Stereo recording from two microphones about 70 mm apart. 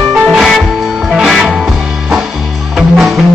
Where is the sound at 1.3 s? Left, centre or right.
Centre.